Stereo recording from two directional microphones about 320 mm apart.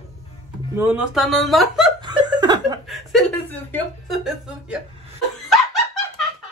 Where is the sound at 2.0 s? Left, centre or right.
Centre.